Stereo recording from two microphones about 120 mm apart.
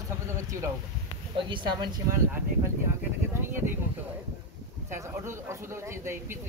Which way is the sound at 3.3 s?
20° right (ahead or behind).